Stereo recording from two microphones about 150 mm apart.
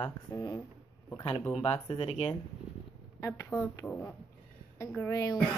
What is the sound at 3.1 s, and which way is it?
Speech, 25° left (ahead or behind).